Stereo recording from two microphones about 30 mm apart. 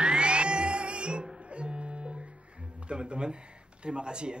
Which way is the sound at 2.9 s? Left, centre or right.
Right.